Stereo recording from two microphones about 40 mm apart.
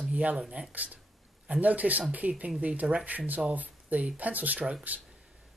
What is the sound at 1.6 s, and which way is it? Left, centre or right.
Speech, right.